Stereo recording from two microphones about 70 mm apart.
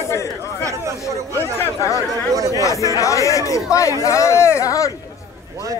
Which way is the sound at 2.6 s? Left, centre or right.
Left.